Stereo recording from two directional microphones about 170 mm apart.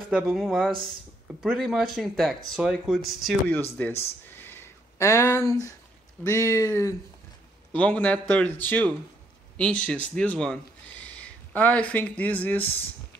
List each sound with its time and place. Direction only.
0.1 s speech: centre (ahead or behind)
3.7 s speech: 10° left (ahead or behind)